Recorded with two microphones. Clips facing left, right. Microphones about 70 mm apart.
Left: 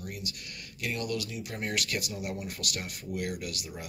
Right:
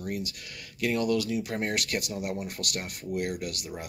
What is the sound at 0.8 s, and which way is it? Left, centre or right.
Speech, right.